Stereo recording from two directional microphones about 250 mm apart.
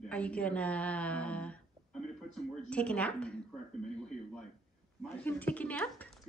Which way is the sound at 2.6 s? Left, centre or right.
Centre.